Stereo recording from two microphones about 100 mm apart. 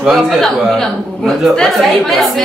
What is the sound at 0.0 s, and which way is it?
A man's voice, centre (ahead or behind).